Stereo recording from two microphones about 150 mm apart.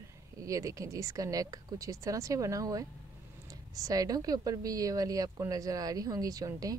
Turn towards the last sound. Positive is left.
turn(degrees=-25)  # may be behind; listen again after turning